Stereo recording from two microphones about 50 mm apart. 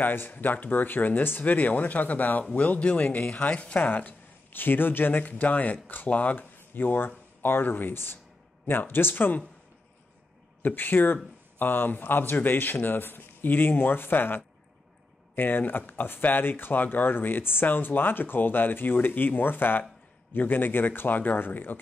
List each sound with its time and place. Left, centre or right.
0.0 s speech: left
3.9 s speech: left
10.6 s speech: left